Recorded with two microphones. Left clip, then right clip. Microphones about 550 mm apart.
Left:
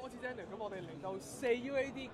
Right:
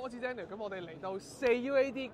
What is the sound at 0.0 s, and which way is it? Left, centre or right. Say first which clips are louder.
Speech: right 5 dB; right.